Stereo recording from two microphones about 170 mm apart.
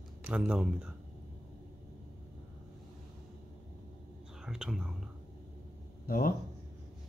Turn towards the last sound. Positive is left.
turn(degrees=60)  # may be behind; listen again after turning